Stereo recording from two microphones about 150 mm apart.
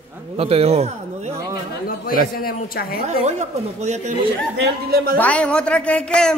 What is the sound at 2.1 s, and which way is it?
Speech, 75° left (ahead or behind).